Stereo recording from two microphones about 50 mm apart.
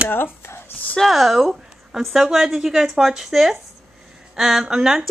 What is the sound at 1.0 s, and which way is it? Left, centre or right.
A woman's voice, centre.